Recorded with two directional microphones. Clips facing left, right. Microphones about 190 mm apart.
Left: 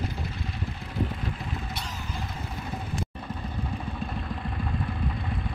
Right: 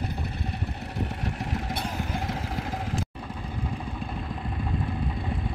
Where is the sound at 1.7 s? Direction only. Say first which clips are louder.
Right 6 dB; 55° right (ahead or behind).